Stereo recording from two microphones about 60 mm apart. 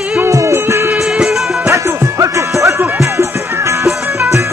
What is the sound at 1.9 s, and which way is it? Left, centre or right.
Music, right.